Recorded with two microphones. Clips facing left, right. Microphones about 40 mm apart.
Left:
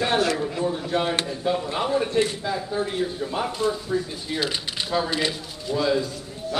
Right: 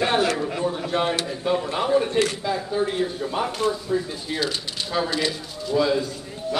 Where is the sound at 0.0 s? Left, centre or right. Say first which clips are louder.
Right 1 dB; centre.